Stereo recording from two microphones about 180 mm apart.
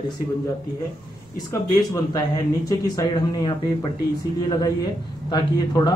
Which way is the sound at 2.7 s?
20° left (ahead or behind).